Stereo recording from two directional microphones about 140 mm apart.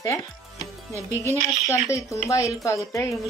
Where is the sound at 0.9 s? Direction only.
20° right (ahead or behind).